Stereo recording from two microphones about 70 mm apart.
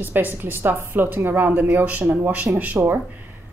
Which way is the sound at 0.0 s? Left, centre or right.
Right.